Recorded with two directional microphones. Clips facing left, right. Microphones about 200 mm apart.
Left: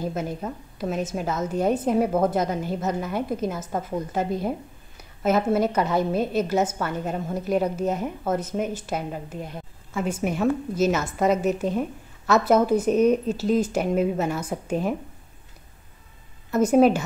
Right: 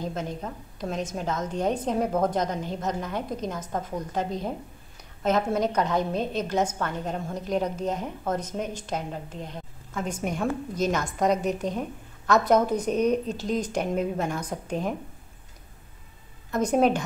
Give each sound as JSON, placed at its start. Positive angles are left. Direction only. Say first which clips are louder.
{"t": 0.0, "sound": "a woman's voice", "louder": "left 3 dB", "side_deg": 10}
{"t": 16.5, "sound": "speech", "louder": "left 5 dB", "side_deg": 5}